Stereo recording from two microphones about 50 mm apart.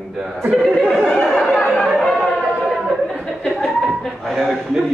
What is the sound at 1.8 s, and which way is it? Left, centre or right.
Chatter, centre.